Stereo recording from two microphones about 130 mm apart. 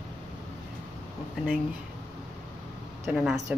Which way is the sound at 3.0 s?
Centre (ahead or behind).